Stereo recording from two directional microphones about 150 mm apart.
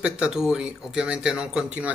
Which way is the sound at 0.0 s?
5° right (ahead or behind).